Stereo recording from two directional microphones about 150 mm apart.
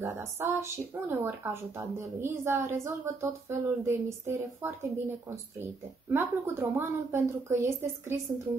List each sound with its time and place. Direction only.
0.0 s speech: 20° right (ahead or behind)